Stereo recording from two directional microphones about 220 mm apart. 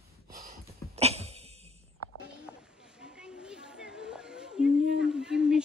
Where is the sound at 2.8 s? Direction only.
5° right (ahead or behind).